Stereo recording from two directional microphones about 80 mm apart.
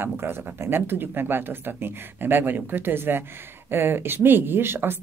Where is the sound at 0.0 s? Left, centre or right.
Right.